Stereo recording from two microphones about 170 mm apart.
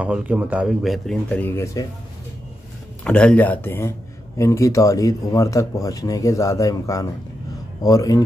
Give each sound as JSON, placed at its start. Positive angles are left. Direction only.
{"t": 0.0, "sound": "speech", "side_deg": -10}
{"t": 3.0, "sound": "a man's voice", "side_deg": 5}